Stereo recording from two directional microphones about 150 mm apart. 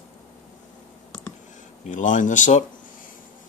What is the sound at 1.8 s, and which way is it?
Speech, 55° left (ahead or behind).